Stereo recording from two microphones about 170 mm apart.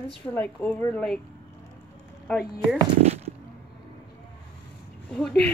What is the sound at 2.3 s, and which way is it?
Speech, centre (ahead or behind).